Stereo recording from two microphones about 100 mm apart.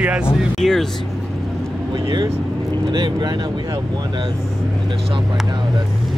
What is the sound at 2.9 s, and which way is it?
Speech, 50° right (ahead or behind).